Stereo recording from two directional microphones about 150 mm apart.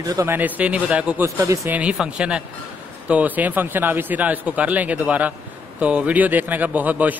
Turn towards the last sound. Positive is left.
turn(degrees=-10)  # may be behind; listen again after turning